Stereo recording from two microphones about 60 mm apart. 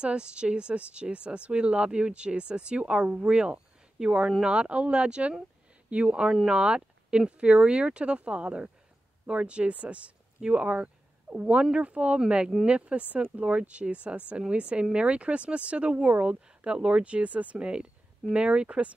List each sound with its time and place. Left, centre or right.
0.0 s speech: centre